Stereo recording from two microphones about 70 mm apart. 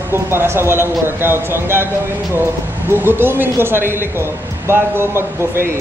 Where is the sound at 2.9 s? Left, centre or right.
Right.